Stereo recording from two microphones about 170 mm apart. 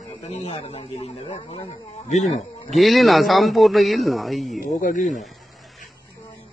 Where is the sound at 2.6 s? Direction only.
Centre (ahead or behind).